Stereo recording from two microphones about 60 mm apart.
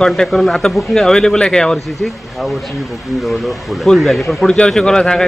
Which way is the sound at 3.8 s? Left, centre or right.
Centre.